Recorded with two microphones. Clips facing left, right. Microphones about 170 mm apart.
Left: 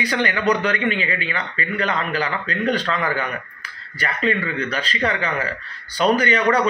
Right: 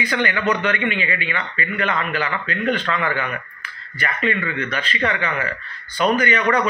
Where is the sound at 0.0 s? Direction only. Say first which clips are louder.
Left 1 dB; 35° left (ahead or behind).